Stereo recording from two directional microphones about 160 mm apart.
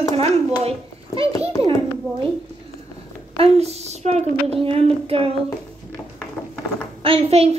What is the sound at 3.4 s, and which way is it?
A woman's voice, 40° right (ahead or behind).